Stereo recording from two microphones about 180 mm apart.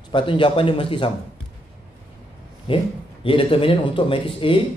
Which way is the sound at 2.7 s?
30° left (ahead or behind).